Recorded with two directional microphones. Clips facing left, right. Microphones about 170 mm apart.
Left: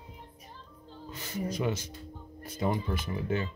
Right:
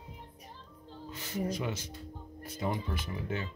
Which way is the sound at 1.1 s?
45° left (ahead or behind).